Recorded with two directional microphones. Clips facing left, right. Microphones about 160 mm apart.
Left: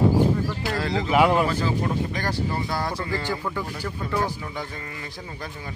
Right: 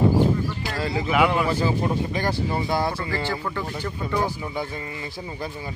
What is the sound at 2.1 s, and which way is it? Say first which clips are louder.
Speech: right 2 dB; 15° right (ahead or behind).